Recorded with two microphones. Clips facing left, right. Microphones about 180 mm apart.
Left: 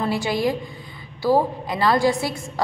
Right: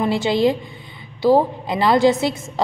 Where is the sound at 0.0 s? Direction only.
25° right (ahead or behind).